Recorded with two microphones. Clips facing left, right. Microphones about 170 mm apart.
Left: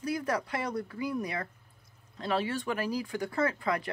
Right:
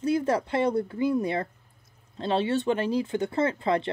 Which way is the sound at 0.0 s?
25° right (ahead or behind).